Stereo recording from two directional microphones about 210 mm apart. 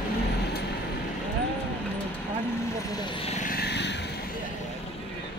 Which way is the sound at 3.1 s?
30° left (ahead or behind).